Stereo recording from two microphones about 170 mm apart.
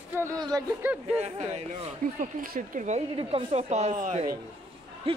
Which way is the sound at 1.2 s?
40° right (ahead or behind).